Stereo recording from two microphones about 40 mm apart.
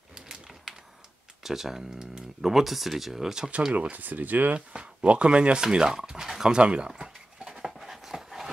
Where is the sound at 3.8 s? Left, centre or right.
Right.